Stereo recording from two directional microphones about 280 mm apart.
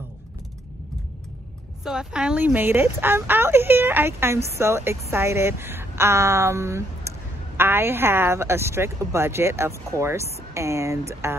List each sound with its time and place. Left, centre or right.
1.9 s a woman's voice: centre